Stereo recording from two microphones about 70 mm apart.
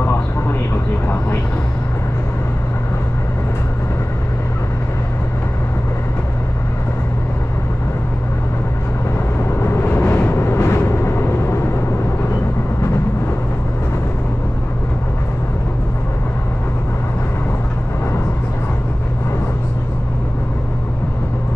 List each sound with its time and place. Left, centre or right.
0.0 s vehicle: left
9.4 s vehicle: left